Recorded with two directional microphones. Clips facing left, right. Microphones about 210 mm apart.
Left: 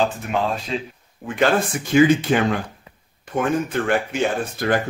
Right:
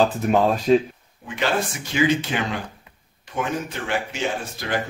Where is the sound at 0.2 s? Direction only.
40° right (ahead or behind).